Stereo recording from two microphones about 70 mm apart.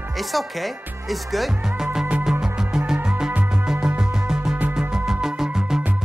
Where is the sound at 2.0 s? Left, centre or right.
Centre.